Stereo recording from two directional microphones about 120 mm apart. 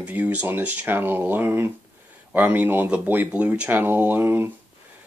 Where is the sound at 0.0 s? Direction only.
15° right (ahead or behind).